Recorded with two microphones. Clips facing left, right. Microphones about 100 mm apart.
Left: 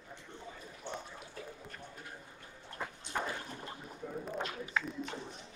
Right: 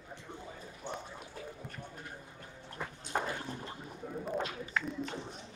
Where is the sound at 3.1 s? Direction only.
45° right (ahead or behind).